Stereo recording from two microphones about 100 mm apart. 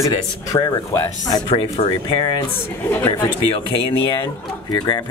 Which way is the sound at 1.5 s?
65° left (ahead or behind).